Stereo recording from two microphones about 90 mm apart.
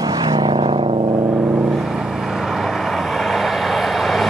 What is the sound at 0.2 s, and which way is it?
Vehicle, 55° right (ahead or behind).